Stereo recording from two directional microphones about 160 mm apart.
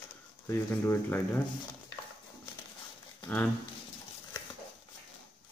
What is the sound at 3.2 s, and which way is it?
Speech, 10° left (ahead or behind).